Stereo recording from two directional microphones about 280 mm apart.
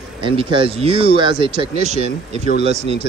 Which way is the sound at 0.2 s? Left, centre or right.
Centre.